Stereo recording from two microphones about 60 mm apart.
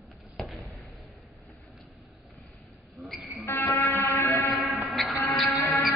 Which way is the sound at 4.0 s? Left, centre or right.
Left.